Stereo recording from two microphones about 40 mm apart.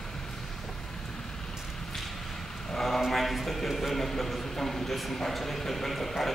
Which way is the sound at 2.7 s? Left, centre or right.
Centre.